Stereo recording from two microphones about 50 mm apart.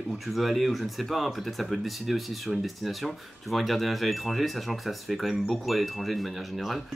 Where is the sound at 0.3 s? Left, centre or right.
Centre.